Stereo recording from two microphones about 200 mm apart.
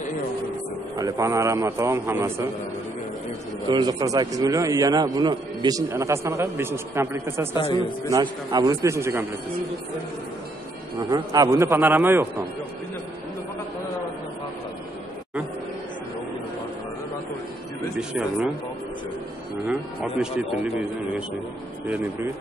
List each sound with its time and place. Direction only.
0.9 s a man's voice: 15° right (ahead or behind)
3.6 s a man's voice: 20° right (ahead or behind)
7.5 s a man's voice: 25° left (ahead or behind)
8.1 s a man's voice: 20° right (ahead or behind)
11.0 s a man's voice: 20° right (ahead or behind)
19.7 s speech: 5° right (ahead or behind)
21.8 s speech: 5° right (ahead or behind)